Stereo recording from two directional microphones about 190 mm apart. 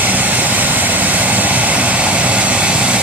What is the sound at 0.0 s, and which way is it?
Vehicle, 10° right (ahead or behind).